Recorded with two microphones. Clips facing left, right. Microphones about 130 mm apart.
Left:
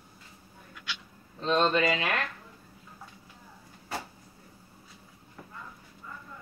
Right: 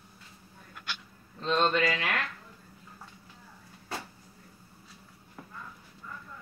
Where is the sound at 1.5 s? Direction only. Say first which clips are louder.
Left 2 dB; 20° left (ahead or behind).